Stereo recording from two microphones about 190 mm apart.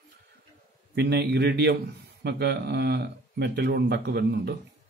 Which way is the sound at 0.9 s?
60° right (ahead or behind).